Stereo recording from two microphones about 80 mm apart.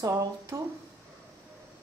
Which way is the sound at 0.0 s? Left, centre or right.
Right.